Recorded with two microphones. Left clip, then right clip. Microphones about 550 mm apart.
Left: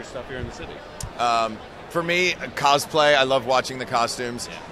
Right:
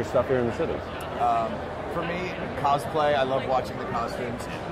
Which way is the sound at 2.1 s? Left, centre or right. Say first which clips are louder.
Left 8 dB; left.